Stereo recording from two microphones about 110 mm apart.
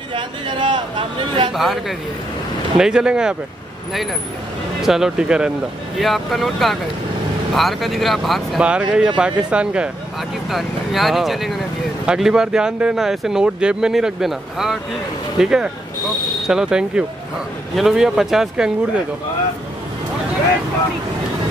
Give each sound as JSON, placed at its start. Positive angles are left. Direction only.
{"t": 0.1, "sound": "speech", "side_deg": -50}
{"t": 1.5, "sound": "speech", "side_deg": 0}
{"t": 4.8, "sound": "speech", "side_deg": -5}